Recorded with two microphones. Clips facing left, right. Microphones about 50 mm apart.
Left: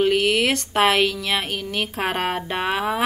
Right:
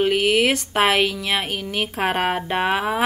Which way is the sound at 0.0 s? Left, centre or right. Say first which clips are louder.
Right 1 dB; centre.